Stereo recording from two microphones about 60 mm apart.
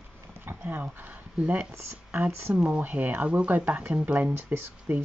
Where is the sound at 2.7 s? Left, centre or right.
Right.